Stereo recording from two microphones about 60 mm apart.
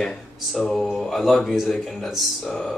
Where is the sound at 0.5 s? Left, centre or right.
Centre.